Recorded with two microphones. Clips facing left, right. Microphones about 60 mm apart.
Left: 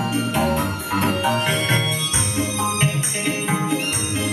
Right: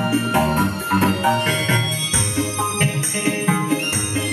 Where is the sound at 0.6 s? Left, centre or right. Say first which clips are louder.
Right 4 dB; centre.